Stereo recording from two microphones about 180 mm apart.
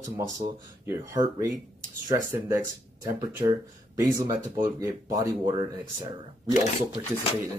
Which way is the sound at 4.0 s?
20° right (ahead or behind).